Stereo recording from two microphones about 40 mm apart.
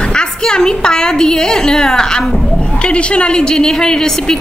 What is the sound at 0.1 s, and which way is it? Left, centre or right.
A woman's voice, centre.